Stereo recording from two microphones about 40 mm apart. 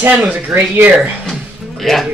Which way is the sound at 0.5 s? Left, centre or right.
Right.